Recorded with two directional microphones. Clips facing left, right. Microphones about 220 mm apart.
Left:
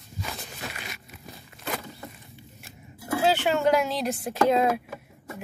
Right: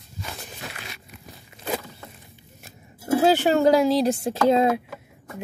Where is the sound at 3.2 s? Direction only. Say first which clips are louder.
Right 4 dB; 40° right (ahead or behind).